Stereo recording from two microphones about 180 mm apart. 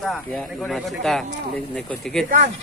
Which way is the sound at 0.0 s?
Centre (ahead or behind).